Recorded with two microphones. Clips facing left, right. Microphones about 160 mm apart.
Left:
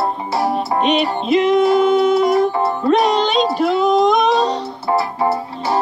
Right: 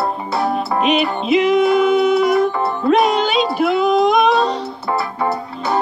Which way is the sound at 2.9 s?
5° right (ahead or behind).